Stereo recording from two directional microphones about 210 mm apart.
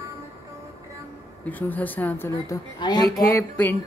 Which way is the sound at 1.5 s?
10° left (ahead or behind).